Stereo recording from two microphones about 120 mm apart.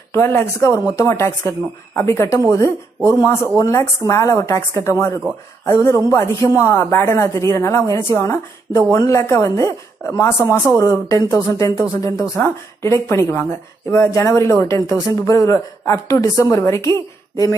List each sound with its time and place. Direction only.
0.1 s speech: 20° left (ahead or behind)
3.1 s speech: 35° left (ahead or behind)